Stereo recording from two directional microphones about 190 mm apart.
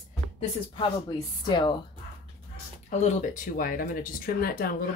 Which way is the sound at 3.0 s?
40° left (ahead or behind).